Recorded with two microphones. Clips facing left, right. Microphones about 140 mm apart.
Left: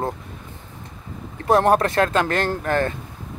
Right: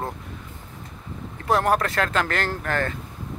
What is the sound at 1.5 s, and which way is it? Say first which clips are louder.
Speech: left 5 dB; 25° left (ahead or behind).